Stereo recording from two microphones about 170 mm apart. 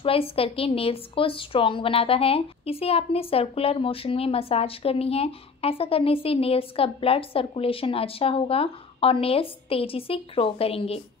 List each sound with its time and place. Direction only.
0.0 s a woman's voice: 35° left (ahead or behind)